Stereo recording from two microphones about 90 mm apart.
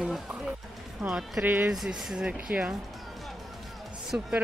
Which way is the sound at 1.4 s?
20° right (ahead or behind).